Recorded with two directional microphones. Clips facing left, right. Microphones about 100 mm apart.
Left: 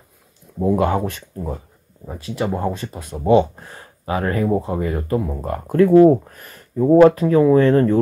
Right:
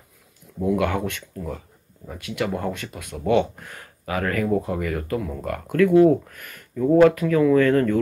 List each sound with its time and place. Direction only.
0.6 s speech: 30° left (ahead or behind)